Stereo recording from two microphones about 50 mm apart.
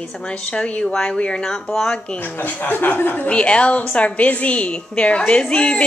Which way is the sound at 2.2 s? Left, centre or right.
Left.